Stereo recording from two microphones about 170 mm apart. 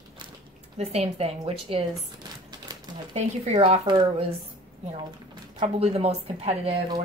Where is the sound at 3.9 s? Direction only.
30° right (ahead or behind).